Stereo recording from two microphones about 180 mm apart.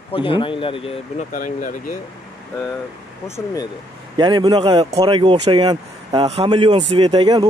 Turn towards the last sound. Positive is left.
turn(degrees=-25)  # may be behind; listen again after turning